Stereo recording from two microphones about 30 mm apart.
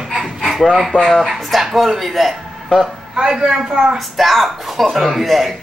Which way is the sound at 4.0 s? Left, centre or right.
Centre.